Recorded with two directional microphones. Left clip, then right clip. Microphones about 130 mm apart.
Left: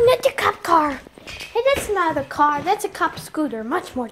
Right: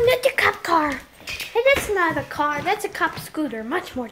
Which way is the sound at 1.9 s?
25° left (ahead or behind).